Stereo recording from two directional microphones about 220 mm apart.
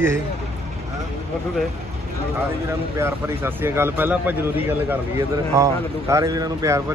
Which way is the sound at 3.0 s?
10° right (ahead or behind).